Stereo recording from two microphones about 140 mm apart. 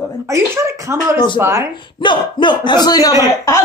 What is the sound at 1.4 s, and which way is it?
Speech, 20° right (ahead or behind).